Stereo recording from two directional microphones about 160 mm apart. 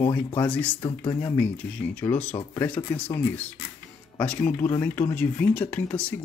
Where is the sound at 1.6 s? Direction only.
10° left (ahead or behind).